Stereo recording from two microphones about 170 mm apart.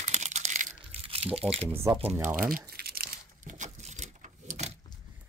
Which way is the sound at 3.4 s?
45° right (ahead or behind).